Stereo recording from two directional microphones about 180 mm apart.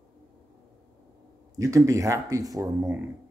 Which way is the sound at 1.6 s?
20° right (ahead or behind).